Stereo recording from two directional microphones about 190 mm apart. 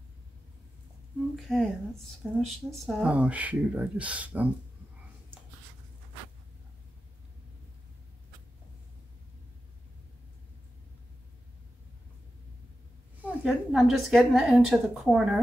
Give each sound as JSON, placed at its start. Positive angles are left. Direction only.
{"t": 1.3, "sound": "a woman's voice", "side_deg": 0}
{"t": 13.2, "sound": "a woman's voice", "side_deg": 0}